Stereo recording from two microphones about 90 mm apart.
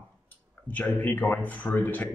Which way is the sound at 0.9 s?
20° left (ahead or behind).